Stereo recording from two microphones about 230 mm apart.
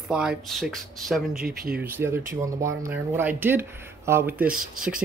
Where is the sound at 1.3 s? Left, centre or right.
Right.